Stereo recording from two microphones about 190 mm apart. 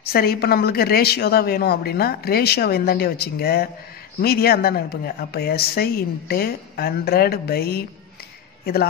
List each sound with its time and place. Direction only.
0.0 s a woman's voice: 55° left (ahead or behind)